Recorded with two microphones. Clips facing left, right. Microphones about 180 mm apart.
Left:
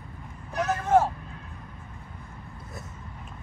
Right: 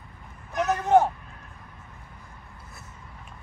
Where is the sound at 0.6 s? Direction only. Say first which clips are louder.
Right 2 dB; 20° right (ahead or behind).